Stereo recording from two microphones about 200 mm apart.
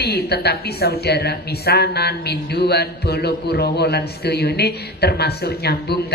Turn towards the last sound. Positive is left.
turn(degrees=55)  # may be behind; listen again after turning